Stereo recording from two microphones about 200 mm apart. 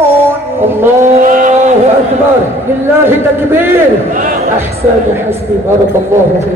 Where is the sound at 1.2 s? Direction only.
40° right (ahead or behind).